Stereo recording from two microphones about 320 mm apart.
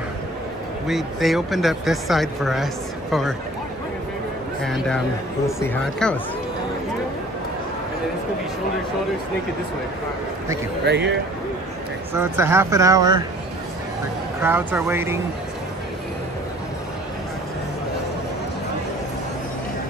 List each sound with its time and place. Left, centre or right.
0.8 s speech: centre
4.6 s speech: centre
10.9 s speech: right
12.1 s speech: centre
14.4 s speech: centre